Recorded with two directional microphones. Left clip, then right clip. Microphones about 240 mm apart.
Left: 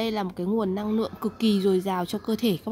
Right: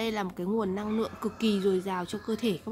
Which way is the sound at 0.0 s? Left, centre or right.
Left.